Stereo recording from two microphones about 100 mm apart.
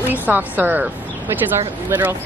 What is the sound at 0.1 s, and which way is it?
Speech, 20° right (ahead or behind).